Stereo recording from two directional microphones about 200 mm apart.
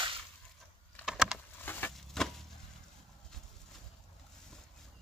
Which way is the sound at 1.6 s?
10° left (ahead or behind).